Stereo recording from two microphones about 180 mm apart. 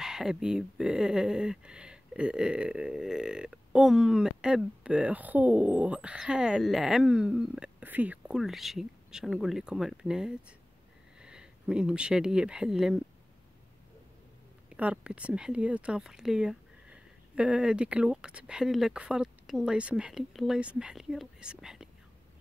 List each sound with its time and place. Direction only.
0.0 s speech: 5° right (ahead or behind)
14.8 s speech: 5° right (ahead or behind)